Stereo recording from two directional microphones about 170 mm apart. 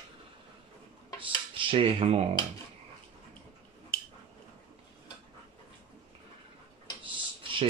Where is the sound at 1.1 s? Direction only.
30° right (ahead or behind).